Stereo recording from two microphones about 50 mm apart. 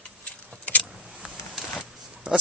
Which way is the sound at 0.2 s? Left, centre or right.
Left.